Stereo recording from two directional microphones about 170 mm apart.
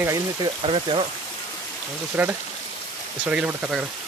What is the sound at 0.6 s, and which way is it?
Speech, 30° right (ahead or behind).